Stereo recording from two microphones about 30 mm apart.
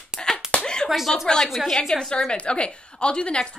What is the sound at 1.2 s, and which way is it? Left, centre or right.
Speech, centre.